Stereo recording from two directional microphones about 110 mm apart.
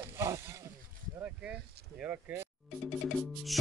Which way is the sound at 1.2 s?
10° right (ahead or behind).